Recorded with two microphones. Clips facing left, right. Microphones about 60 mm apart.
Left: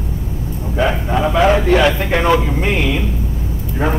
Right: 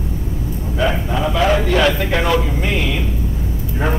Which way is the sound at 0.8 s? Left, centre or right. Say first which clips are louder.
Left 3 dB; left.